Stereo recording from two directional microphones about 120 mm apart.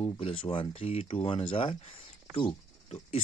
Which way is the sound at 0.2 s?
50° left (ahead or behind).